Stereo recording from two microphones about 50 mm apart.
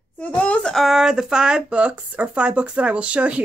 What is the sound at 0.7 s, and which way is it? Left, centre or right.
Speech, centre.